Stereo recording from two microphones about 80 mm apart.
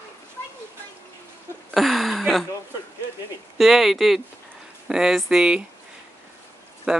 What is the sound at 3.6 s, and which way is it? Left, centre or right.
Speech, centre.